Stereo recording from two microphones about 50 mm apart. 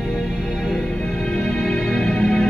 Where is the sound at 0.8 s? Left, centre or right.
Centre.